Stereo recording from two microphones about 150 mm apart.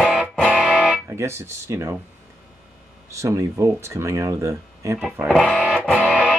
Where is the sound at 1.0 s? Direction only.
20° right (ahead or behind).